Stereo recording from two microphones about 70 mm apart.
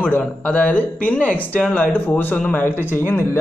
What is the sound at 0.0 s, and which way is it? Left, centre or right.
Speech, left.